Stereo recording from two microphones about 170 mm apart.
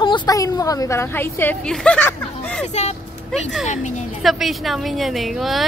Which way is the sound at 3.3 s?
Centre (ahead or behind).